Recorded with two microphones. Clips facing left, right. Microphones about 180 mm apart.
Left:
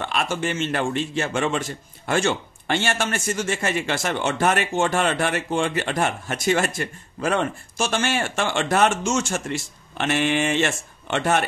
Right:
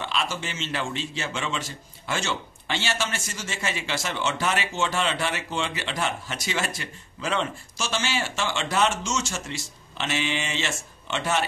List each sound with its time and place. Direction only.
0.0 s a man's voice: 55° left (ahead or behind)